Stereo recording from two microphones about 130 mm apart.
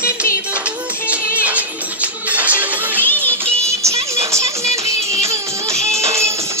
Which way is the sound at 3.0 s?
15° left (ahead or behind).